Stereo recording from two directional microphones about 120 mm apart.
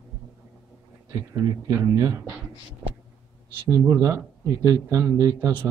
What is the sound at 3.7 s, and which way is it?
Speech, 30° right (ahead or behind).